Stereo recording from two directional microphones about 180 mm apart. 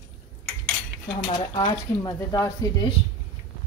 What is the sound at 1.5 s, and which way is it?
Speech, 25° left (ahead or behind).